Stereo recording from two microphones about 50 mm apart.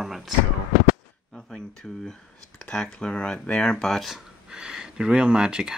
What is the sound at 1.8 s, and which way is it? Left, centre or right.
Speech, centre.